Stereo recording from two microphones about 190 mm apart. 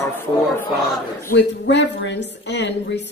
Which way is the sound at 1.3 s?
65° left (ahead or behind).